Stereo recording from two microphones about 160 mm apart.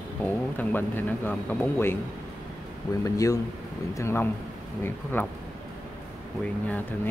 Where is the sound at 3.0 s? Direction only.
20° left (ahead or behind).